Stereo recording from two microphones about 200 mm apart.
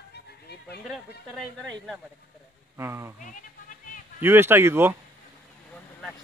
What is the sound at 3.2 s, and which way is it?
Music, 40° left (ahead or behind).